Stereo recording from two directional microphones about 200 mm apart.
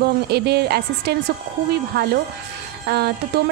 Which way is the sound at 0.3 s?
55° right (ahead or behind).